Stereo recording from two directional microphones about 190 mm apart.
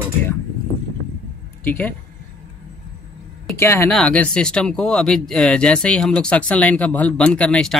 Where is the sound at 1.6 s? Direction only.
10° left (ahead or behind).